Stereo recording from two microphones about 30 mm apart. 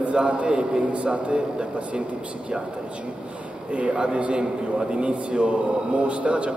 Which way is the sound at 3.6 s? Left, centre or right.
Right.